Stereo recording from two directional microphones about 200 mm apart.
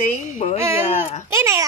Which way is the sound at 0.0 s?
40° left (ahead or behind).